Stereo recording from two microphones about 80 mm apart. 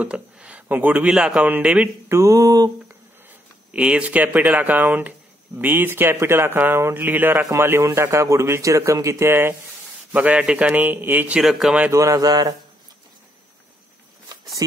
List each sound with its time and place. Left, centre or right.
0.0 s a man's voice: centre
1.1 s a man's voice: centre
2.0 s speech: right
3.3 s a man's voice: centre; by 9.6 s right
10.1 s a man's voice: centre
11.9 s speech: right